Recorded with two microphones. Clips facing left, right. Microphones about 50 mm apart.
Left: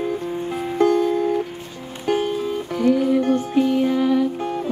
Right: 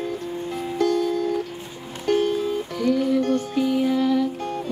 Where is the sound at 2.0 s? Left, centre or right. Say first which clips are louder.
Even; centre.